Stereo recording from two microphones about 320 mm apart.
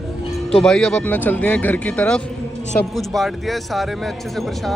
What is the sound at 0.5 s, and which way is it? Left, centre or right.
Speech, centre.